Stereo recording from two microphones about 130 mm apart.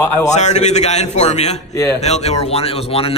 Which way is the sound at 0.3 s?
60° left (ahead or behind).